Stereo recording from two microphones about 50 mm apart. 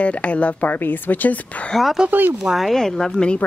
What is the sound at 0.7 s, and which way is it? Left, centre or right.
Speech, left.